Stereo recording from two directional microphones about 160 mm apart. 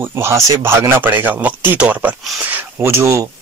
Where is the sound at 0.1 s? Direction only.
20° right (ahead or behind).